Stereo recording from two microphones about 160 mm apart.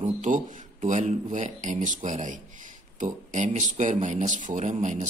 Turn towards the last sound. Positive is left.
turn(degrees=-50)  # may be behind; listen again after turning